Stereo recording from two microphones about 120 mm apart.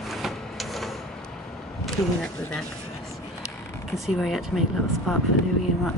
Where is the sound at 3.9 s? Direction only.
Centre (ahead or behind).